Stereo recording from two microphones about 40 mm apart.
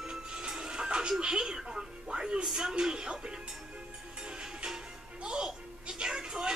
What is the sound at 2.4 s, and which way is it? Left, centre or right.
Speech, centre.